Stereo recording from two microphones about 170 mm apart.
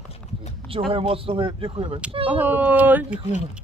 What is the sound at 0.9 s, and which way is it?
Speech, 35° right (ahead or behind).